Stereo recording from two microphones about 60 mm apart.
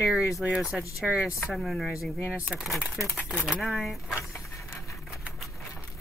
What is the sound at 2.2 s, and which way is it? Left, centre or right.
A woman's voice, centre.